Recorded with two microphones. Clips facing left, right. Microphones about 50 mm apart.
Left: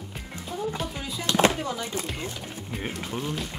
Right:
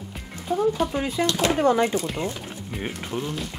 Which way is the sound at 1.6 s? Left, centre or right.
Right.